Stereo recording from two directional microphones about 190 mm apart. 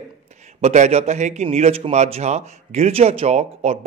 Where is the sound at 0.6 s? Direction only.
35° right (ahead or behind).